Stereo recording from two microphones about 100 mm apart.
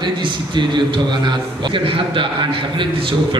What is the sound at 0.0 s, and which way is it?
A man's voice, 50° right (ahead or behind).